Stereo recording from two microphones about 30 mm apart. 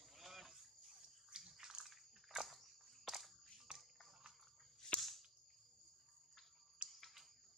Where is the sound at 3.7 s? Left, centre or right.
Right.